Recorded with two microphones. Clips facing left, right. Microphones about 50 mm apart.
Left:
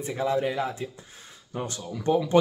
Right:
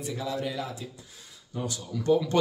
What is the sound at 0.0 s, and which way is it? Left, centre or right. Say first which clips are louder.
Speech: left 6 dB; left.